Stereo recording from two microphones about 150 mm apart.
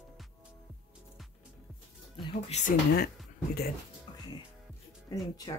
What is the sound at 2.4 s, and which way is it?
Speech, 50° left (ahead or behind).